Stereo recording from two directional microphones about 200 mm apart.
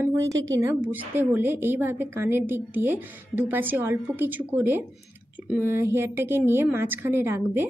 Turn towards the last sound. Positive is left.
turn(degrees=-10)  # may be behind; listen again after turning